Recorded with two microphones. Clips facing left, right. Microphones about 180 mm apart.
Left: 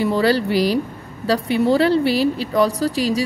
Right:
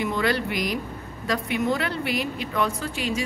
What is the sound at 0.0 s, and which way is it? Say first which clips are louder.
Speech: left 7 dB; 35° left (ahead or behind).